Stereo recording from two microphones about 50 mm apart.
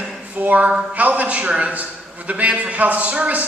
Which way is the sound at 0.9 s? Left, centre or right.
Right.